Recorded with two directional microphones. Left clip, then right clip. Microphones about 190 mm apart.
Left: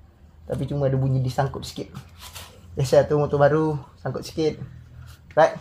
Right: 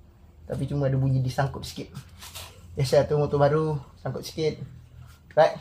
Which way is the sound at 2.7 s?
10° left (ahead or behind).